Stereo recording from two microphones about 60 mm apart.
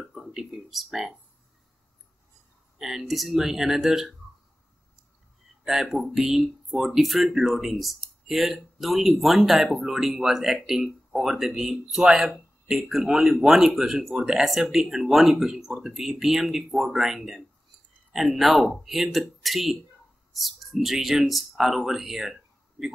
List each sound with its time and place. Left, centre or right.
0.0 s speech: centre
2.8 s speech: centre
5.6 s speech: centre